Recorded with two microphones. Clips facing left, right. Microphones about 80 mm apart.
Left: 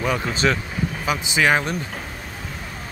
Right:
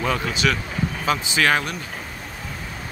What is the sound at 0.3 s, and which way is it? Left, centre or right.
Speech, left.